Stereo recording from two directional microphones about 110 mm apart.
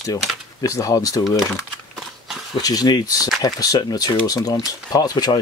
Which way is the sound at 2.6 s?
35° left (ahead or behind).